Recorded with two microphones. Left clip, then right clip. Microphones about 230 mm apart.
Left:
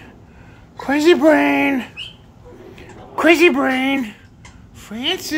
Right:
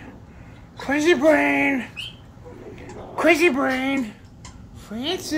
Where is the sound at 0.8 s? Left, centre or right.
Left.